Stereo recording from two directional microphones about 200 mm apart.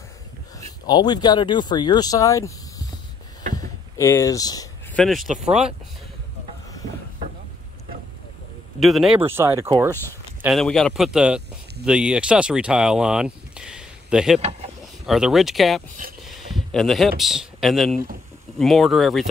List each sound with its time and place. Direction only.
0.6 s speech: 20° left (ahead or behind)
3.5 s a sound: 15° left (ahead or behind)
4.9 s speech: centre (ahead or behind)
5.3 s speech: 35° right (ahead or behind)
8.7 s speech: centre (ahead or behind)
9.2 s speech: 10° right (ahead or behind)
10.4 s speech: centre (ahead or behind)
16.3 s a sound: centre (ahead or behind)
17.2 s speech: centre (ahead or behind)